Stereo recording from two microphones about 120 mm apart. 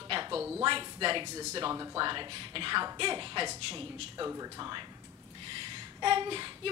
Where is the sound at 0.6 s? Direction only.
45° right (ahead or behind).